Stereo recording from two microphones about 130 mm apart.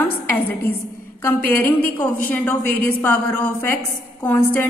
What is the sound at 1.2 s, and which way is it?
A woman's voice, 15° left (ahead or behind).